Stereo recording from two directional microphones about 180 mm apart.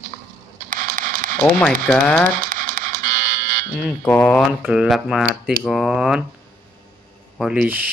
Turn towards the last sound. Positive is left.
turn(degrees=-10)  # may be behind; listen again after turning